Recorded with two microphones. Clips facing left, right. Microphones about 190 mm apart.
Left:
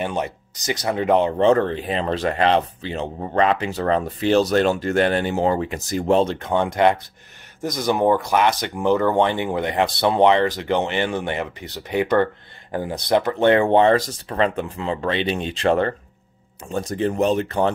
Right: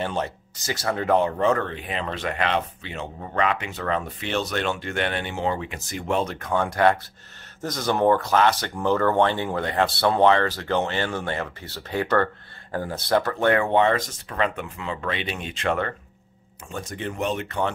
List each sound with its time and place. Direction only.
0.0 s speech: 15° left (ahead or behind); by 17.7 s 35° left (ahead or behind)